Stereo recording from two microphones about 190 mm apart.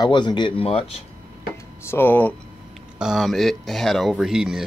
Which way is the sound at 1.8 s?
10° left (ahead or behind).